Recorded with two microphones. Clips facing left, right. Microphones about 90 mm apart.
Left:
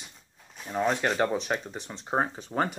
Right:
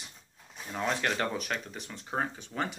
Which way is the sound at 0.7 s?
20° left (ahead or behind).